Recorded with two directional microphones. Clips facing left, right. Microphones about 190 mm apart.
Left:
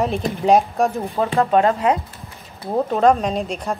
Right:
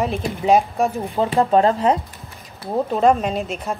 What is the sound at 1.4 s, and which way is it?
Speech, 30° right (ahead or behind).